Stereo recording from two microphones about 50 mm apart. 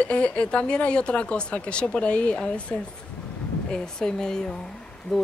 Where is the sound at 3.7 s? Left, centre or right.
Centre.